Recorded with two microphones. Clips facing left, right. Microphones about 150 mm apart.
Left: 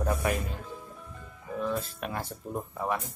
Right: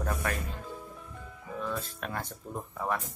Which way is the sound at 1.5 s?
10° left (ahead or behind).